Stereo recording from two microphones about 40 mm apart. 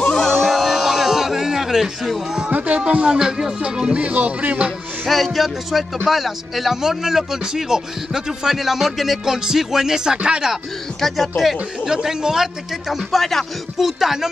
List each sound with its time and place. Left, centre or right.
0.1 s a sound: centre
0.5 s a sound: centre
2.5 s a sound: right
2.8 s a man's voice: right
4.0 s music: right
5.0 s music: centre
6.0 s a man's voice: centre
10.1 s speech: right
11.0 s music: centre
11.8 s a man's voice: centre
12.9 s music: centre
13.7 s a man's voice: centre